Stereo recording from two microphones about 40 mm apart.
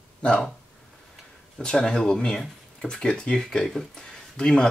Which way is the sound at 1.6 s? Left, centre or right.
Centre.